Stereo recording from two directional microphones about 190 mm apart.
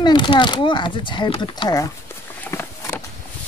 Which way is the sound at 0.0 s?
25° left (ahead or behind).